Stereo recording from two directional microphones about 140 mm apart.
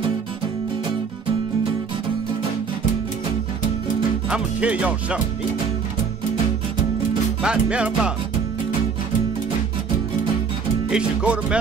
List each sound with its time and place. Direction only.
4.3 s speech: 10° right (ahead or behind)
7.4 s music: 5° right (ahead or behind)
10.9 s speech: 5° right (ahead or behind)